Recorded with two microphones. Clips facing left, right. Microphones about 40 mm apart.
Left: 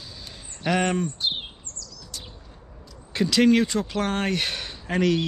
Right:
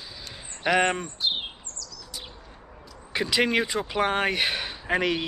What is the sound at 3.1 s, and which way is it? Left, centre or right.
Speech, centre.